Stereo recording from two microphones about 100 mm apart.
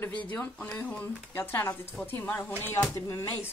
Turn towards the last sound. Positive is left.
turn(degrees=25)  # may be behind; listen again after turning